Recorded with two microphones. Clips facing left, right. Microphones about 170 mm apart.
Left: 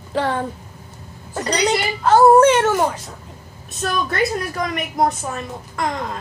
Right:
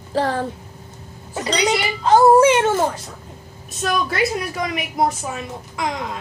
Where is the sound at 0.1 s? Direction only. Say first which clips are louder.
Even; 35° right (ahead or behind).